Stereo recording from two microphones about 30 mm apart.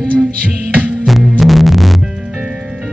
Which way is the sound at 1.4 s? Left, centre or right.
Centre.